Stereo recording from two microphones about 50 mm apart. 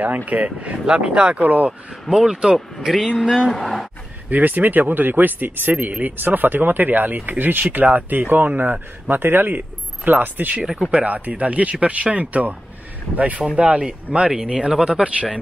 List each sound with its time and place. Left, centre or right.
0.0 s speech: right
0.8 s speech: centre
1.4 s speech: right
2.0 s speech: centre
4.3 s speech: right
10.7 s speech: centre
11.1 s speech: right